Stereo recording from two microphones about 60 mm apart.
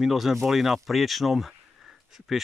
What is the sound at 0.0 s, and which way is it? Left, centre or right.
Speech, centre.